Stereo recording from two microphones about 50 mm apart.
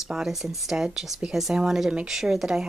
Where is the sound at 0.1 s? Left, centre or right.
Centre.